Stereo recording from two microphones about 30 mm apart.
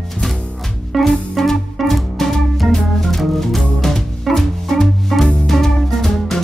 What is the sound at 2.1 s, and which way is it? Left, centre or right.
Music, centre.